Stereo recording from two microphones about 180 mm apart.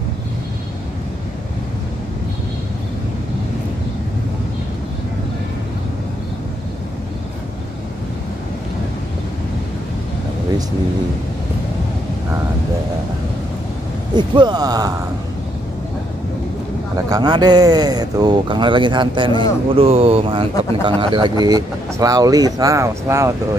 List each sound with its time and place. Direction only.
14.1 s speech: 25° right (ahead or behind)
17.1 s speech: 20° right (ahead or behind)